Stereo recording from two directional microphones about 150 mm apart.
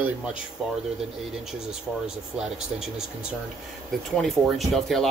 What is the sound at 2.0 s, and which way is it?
Speech, 5° right (ahead or behind).